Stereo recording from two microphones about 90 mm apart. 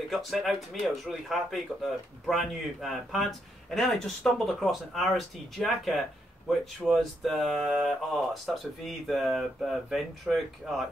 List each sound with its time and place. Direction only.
0.1 s speech: centre (ahead or behind)
7.0 s speech: 5° left (ahead or behind)